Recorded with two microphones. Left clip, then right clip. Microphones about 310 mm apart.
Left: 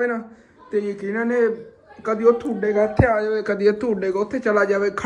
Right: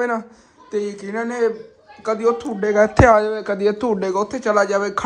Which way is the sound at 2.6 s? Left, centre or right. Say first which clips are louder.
Right 5 dB; right.